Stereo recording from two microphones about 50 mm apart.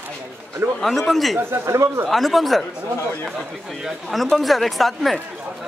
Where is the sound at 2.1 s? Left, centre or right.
Centre.